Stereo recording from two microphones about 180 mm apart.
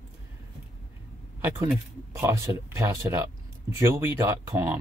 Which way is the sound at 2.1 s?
15° right (ahead or behind).